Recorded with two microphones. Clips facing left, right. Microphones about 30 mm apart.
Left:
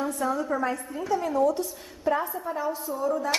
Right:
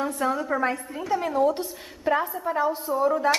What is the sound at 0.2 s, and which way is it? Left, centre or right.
Speech, right.